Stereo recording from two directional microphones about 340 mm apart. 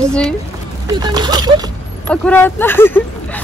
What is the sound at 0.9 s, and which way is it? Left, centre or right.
Speech, centre.